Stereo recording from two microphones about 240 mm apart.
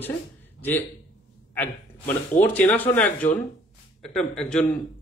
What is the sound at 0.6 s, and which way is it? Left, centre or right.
A man's voice, centre.